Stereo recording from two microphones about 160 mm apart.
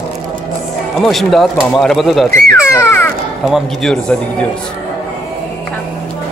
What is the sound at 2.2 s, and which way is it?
Speech, 15° left (ahead or behind).